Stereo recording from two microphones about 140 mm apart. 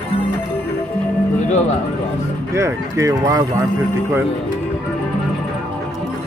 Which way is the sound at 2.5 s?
20° right (ahead or behind).